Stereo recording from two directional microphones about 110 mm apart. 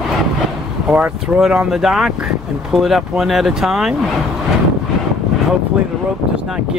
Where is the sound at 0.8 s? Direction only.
10° right (ahead or behind).